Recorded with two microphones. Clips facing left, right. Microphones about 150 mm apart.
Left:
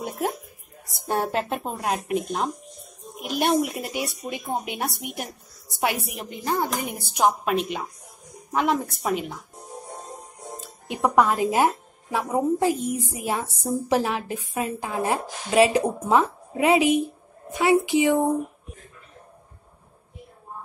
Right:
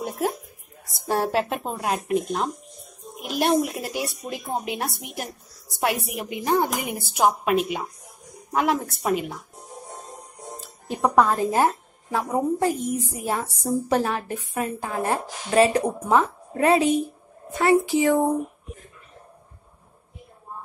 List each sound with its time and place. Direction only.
0.0 s a woman's voice: centre (ahead or behind)
6.3 s speech: 15° right (ahead or behind)
11.0 s a woman's voice: 5° left (ahead or behind)
12.4 s a woman's voice: 20° left (ahead or behind)